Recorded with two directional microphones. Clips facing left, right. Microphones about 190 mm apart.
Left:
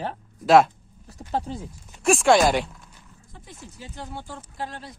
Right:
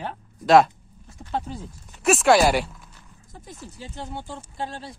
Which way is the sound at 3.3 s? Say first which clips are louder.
Right 3 dB; 35° right (ahead or behind).